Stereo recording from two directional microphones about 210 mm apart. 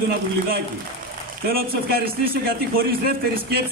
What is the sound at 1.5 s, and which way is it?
A man's voice, 45° right (ahead or behind).